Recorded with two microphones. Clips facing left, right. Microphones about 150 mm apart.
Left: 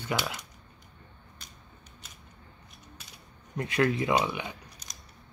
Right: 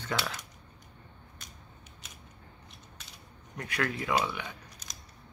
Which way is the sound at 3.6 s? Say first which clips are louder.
Left 7 dB; 25° left (ahead or behind).